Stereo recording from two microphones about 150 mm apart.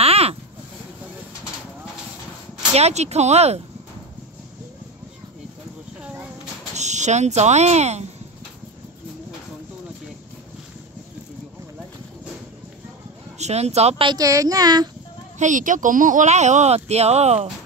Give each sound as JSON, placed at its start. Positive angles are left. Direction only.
{"t": 0.0, "sound": "a sound", "side_deg": -45}
{"t": 2.7, "sound": "speech", "side_deg": -45}
{"t": 6.7, "sound": "speech", "side_deg": -50}
{"t": 13.4, "sound": "speech", "side_deg": -45}
{"t": 14.1, "sound": "speech", "side_deg": -25}
{"t": 15.3, "sound": "speech", "side_deg": -55}